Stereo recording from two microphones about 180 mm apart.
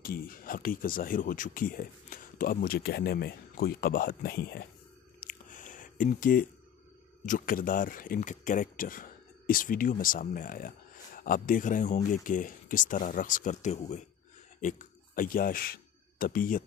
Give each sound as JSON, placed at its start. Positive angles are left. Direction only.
{"t": 0.0, "sound": "speech", "side_deg": 55}
{"t": 5.2, "sound": "squish", "side_deg": 50}
{"t": 7.2, "sound": "speech", "side_deg": 50}